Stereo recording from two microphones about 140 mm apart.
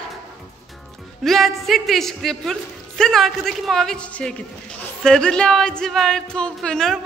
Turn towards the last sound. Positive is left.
turn(degrees=5)  # may be behind; listen again after turning